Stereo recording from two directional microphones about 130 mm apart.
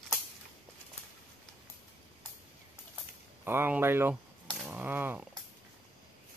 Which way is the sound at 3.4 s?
15° right (ahead or behind).